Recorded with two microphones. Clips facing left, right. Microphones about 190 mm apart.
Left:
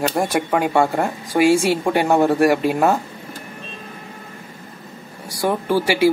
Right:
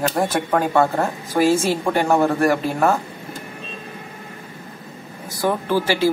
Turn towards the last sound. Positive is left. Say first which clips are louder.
# left 2 dB
turn(degrees=15)  # may be behind; listen again after turning